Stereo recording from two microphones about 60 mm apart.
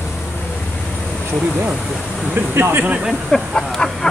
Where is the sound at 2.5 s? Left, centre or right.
Right.